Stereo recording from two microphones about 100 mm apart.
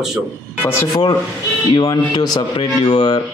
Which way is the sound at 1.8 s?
40° left (ahead or behind).